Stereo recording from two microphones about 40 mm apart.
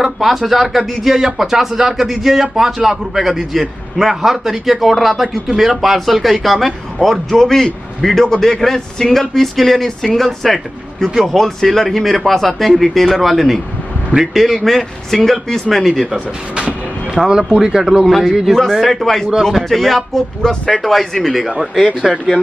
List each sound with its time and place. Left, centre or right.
0.0 s a man's voice: centre
7.3 s a man's voice: centre
16.5 s vehicle: right
17.3 s speech: centre
18.0 s a man's voice: centre